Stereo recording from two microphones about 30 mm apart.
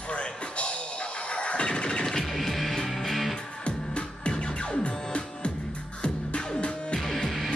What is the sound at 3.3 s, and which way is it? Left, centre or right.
Music, left.